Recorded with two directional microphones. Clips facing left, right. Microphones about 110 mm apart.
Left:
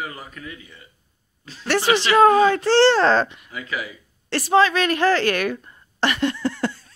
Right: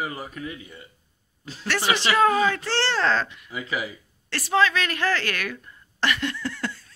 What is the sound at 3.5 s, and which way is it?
Speech, 15° right (ahead or behind).